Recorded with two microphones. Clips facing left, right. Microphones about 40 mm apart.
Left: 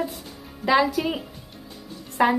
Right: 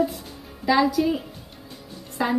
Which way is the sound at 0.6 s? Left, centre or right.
Left.